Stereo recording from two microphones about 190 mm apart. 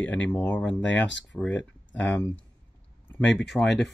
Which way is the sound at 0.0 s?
10° left (ahead or behind).